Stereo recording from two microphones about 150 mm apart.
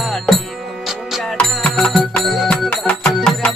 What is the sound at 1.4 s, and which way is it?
Music, 5° left (ahead or behind).